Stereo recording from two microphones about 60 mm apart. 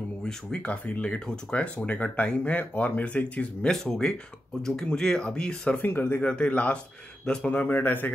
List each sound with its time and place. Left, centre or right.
0.2 s speech: centre
0.6 s speech: left
3.6 s speech: centre
5.8 s speech: left